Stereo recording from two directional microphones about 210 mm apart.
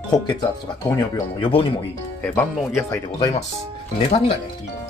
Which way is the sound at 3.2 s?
30° left (ahead or behind).